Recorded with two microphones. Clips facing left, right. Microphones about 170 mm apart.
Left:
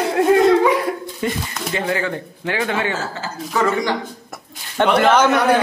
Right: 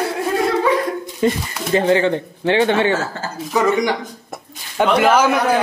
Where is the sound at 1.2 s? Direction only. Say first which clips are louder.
Right 5 dB; 30° right (ahead or behind).